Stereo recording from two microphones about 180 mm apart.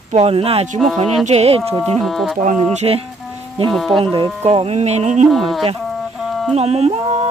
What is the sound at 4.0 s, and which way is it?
Speech, 25° right (ahead or behind).